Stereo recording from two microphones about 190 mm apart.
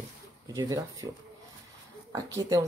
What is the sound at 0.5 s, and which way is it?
Speech, 15° right (ahead or behind).